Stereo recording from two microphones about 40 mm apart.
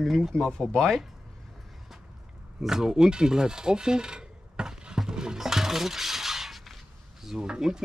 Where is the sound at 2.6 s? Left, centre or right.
Centre.